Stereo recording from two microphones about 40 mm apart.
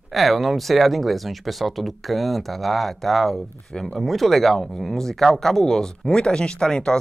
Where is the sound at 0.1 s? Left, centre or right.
Centre.